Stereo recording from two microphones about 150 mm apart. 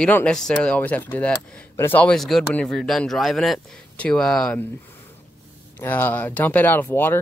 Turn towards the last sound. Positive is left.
turn(degrees=15)  # may be behind; listen again after turning